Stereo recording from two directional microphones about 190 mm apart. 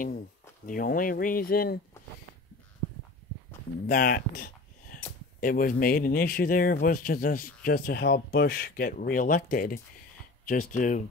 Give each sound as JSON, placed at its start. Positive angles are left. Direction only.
{"t": 0.7, "sound": "speech", "side_deg": 45}
{"t": 3.8, "sound": "speech", "side_deg": 45}